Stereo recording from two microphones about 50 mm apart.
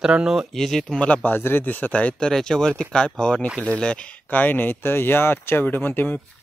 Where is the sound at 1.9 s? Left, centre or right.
Left.